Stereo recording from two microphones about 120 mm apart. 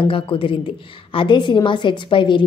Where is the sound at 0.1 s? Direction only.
45° left (ahead or behind).